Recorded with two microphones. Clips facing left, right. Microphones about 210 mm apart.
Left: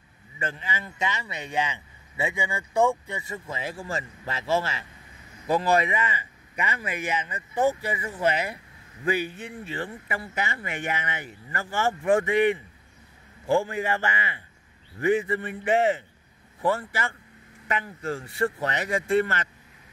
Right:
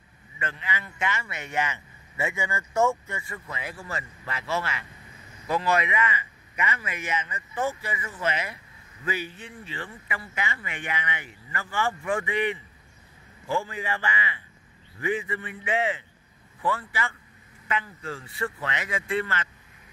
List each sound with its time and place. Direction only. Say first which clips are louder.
0.5 s speech: even; 30° left (ahead or behind)
9.1 s a man's voice: left 5 dB; 55° left (ahead or behind)
10.0 s a man's voice: left 3 dB; 40° left (ahead or behind)